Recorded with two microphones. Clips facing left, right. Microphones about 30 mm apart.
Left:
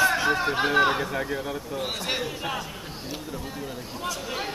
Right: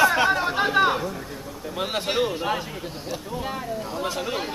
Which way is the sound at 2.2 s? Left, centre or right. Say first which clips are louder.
Right 5 dB; centre.